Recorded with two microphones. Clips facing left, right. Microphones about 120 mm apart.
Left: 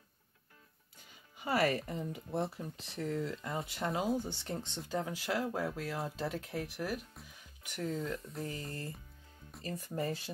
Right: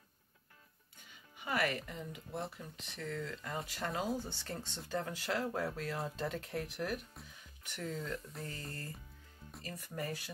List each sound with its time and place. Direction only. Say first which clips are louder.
1.4 s speech: left 4 dB; 35° left (ahead or behind); by 8.5 s centre (ahead or behind)
9.6 s speech: left 5 dB; 25° left (ahead or behind)